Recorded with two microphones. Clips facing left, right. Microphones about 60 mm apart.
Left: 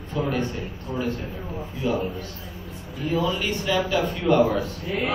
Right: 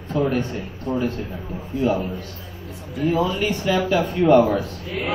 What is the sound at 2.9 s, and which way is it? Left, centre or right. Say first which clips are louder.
Speech: right 5 dB; right.